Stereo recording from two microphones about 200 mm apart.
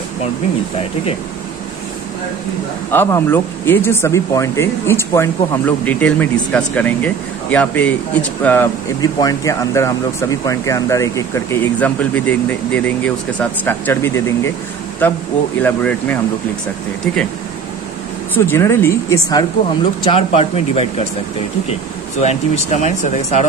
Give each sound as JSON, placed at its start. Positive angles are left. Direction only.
{"t": 2.9, "sound": "speech", "side_deg": 10}
{"t": 18.3, "sound": "a woman's voice", "side_deg": 10}
{"t": 22.2, "sound": "speech", "side_deg": 35}